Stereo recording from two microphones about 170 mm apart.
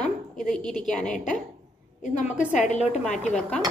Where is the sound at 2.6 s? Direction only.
45° left (ahead or behind).